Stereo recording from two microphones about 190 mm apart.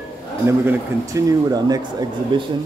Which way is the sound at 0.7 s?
20° right (ahead or behind).